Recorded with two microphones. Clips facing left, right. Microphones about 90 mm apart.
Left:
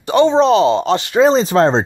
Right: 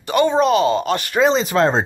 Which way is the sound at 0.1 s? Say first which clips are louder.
Left 4 dB; 25° left (ahead or behind).